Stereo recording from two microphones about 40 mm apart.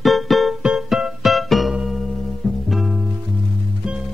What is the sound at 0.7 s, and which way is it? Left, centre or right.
Music, centre.